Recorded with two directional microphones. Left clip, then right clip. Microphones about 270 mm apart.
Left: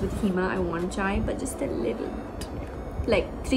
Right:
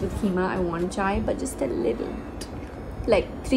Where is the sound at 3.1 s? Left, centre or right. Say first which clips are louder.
Right 3 dB; centre.